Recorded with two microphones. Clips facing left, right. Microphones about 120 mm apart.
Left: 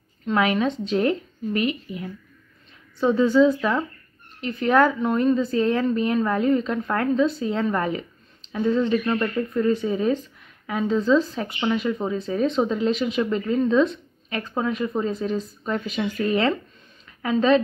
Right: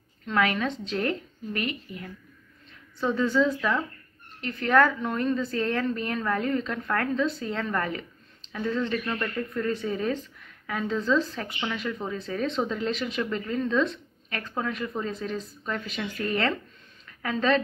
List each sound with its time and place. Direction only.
0.3 s a woman's voice: 20° left (ahead or behind)